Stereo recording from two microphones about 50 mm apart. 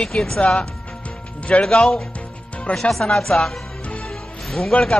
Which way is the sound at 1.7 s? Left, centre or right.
Centre.